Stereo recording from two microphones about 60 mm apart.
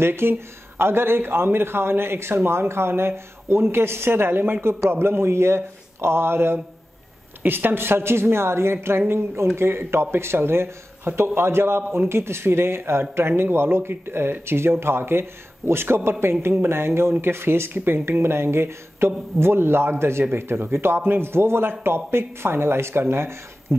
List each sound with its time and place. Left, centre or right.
0.0 s speech: right